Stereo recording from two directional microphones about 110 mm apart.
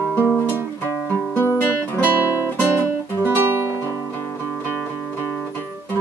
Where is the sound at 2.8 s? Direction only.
20° right (ahead or behind).